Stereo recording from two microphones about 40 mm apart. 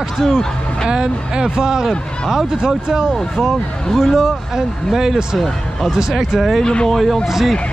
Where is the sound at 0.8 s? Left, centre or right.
Centre.